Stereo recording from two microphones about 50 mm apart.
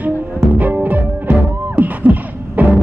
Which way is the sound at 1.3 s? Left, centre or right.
Right.